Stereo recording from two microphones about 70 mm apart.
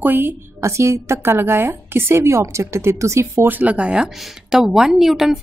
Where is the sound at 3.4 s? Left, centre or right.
Right.